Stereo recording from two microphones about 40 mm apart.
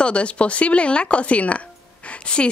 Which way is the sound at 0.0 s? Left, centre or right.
Left.